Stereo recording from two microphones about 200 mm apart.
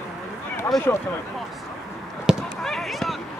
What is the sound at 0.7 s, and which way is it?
Speech, centre (ahead or behind).